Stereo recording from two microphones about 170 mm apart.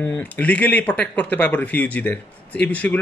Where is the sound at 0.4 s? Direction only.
10° left (ahead or behind).